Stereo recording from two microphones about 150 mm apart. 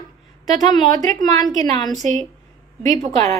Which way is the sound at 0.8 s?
25° left (ahead or behind).